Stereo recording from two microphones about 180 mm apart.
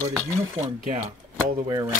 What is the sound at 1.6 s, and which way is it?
Speech, 20° right (ahead or behind).